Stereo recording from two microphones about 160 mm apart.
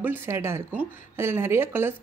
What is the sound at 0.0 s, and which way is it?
Speech, 15° right (ahead or behind).